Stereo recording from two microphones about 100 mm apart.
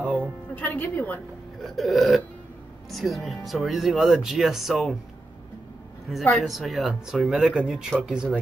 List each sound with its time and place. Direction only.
0.0 s music: 15° right (ahead or behind)
0.6 s a woman's voice: 15° left (ahead or behind)
1.6 s speech: centre (ahead or behind)
6.3 s speech: centre (ahead or behind)